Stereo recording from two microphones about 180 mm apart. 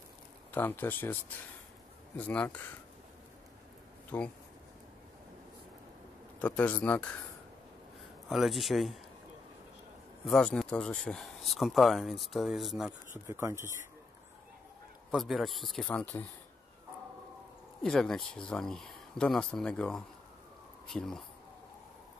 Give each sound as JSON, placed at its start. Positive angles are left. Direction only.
{"t": 0.5, "sound": "speech", "side_deg": 10}
{"t": 2.1, "sound": "speech", "side_deg": 5}
{"t": 4.1, "sound": "speech", "side_deg": 5}
{"t": 6.4, "sound": "speech", "side_deg": 5}
{"t": 8.3, "sound": "speech", "side_deg": 0}
{"t": 10.2, "sound": "speech", "side_deg": 5}
{"t": 13.1, "sound": "speech", "side_deg": -15}
{"t": 15.0, "sound": "speech", "side_deg": 0}
{"t": 17.8, "sound": "speech", "side_deg": 5}